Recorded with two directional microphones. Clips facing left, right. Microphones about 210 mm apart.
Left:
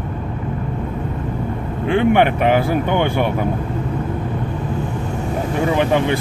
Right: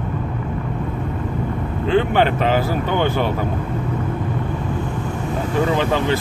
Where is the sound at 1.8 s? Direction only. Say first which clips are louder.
Left 2 dB; 15° left (ahead or behind).